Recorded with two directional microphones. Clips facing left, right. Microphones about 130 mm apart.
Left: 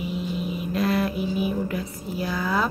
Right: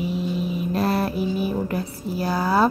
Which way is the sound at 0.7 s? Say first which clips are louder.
Even; 35° right (ahead or behind).